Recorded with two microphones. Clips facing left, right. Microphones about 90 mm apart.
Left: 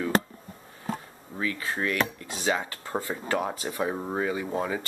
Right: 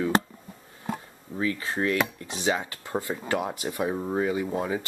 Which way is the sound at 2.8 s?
25° left (ahead or behind).